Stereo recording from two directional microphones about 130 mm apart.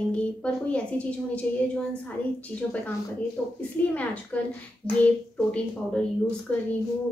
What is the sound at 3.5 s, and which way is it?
A woman's voice, 10° left (ahead or behind).